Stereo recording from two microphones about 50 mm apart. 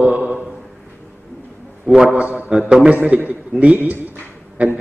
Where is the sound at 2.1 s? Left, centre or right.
Right.